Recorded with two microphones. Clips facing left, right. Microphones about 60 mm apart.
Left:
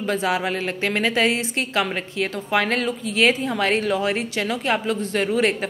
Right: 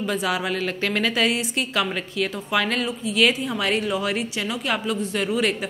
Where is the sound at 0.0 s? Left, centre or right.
Left.